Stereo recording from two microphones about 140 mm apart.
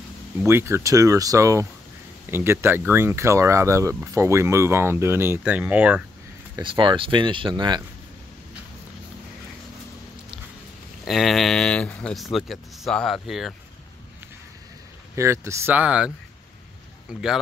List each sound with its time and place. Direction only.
0.5 s speech: 20° right (ahead or behind)
6.6 s speech: 35° right (ahead or behind)
11.1 s speech: centre (ahead or behind)
15.1 s speech: 20° right (ahead or behind)
17.1 s speech: 5° right (ahead or behind)